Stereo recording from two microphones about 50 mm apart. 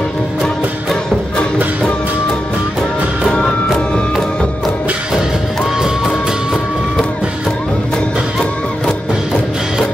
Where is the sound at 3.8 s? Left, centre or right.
Left.